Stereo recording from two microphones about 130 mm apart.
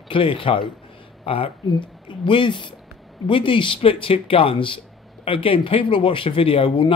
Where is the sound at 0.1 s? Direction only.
40° left (ahead or behind).